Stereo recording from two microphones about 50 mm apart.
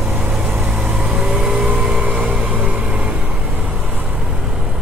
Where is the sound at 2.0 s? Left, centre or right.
Centre.